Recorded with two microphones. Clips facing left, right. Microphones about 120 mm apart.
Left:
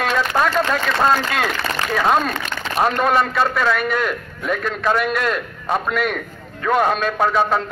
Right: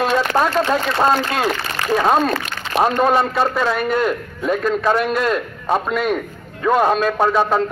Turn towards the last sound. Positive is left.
turn(degrees=-35)  # may be behind; listen again after turning